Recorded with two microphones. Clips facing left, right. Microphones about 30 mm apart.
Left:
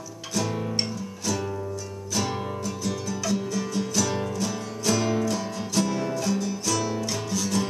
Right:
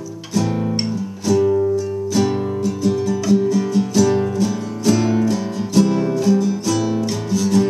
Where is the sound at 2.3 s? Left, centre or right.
Centre.